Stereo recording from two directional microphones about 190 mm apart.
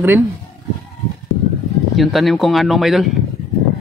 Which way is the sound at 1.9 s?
Centre (ahead or behind).